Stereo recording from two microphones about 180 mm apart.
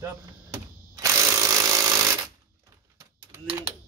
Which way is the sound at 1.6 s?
20° right (ahead or behind).